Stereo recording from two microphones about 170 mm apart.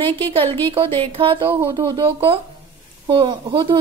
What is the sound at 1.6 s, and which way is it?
A woman's voice, 20° right (ahead or behind).